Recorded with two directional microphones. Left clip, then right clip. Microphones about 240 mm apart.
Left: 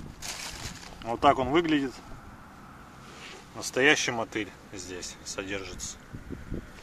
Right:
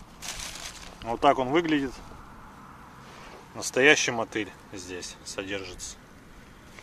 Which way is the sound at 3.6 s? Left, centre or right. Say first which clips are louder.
Right 3 dB; centre.